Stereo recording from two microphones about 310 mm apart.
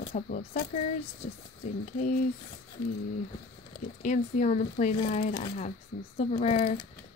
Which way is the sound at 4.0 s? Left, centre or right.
Left.